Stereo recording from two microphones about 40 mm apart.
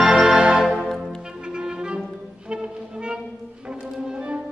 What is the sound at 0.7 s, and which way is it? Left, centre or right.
Music, centre.